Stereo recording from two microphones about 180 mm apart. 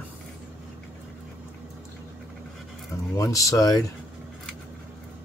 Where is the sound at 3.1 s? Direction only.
20° left (ahead or behind).